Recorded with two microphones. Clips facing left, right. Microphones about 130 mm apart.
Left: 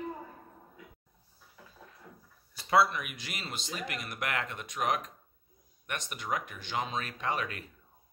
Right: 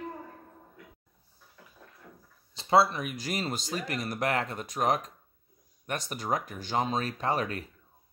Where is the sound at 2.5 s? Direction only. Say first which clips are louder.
Right 3 dB; 25° right (ahead or behind).